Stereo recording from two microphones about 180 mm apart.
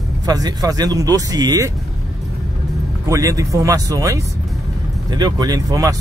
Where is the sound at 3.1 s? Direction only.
20° right (ahead or behind).